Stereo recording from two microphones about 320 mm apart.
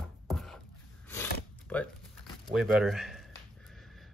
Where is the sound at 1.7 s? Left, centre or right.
Centre.